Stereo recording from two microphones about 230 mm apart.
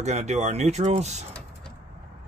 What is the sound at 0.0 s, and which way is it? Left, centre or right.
Speech, right.